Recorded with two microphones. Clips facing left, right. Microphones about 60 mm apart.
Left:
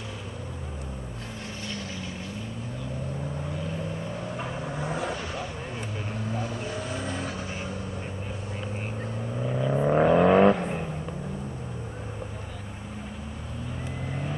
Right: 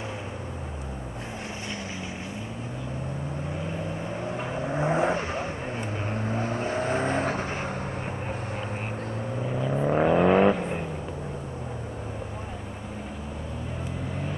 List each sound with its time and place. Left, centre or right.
4.4 s vehicle: centre; by 7.7 s right
9.5 s vehicle: centre